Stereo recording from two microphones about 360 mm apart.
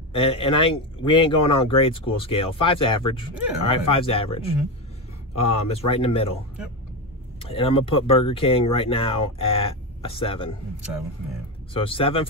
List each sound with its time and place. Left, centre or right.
0.1 s speech: centre
7.4 s speech: centre
11.7 s speech: centre